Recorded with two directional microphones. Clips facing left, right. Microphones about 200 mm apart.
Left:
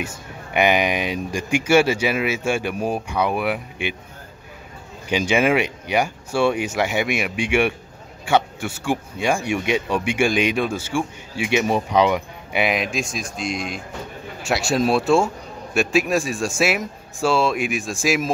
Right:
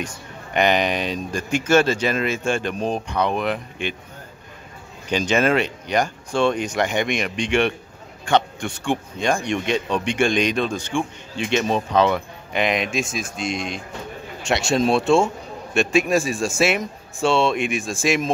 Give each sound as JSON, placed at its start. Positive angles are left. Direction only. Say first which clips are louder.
{"t": 0.0, "sound": "speech", "louder": "left 1 dB", "side_deg": 10}
{"t": 5.1, "sound": "a man's voice", "louder": "left 1 dB", "side_deg": 10}